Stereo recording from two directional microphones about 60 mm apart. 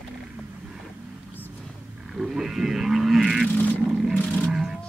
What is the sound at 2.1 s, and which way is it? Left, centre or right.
Wild animals, centre.